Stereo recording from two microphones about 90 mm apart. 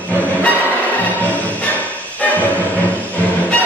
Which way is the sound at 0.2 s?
15° left (ahead or behind).